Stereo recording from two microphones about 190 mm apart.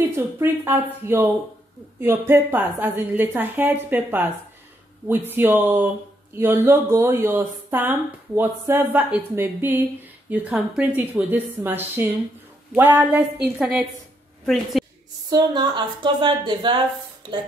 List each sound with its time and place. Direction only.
0.1 s a woman's voice: 10° right (ahead or behind)
15.2 s a woman's voice: 25° right (ahead or behind)